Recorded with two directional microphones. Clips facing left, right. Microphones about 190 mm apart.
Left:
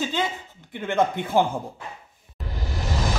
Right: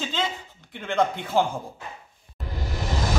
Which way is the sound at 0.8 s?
10° left (ahead or behind).